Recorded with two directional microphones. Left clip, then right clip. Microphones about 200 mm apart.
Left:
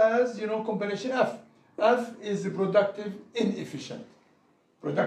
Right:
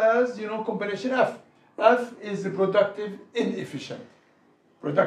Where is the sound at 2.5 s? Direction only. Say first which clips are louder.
Right 3 dB; 25° right (ahead or behind).